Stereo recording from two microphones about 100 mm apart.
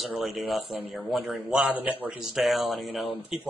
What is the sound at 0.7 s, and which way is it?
Speech, 20° right (ahead or behind).